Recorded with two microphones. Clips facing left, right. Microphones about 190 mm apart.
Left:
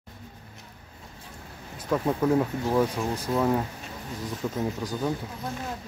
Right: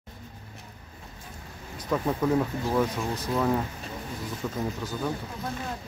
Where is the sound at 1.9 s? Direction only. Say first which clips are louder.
Left 2 dB; 5° left (ahead or behind).